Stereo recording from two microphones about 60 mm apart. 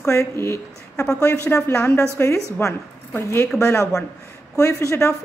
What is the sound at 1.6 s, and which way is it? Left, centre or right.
Speech, left.